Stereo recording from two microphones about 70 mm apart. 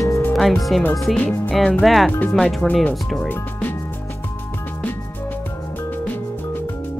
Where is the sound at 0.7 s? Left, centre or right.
Centre.